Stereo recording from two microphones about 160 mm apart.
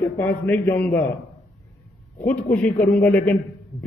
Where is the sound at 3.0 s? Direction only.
10° left (ahead or behind).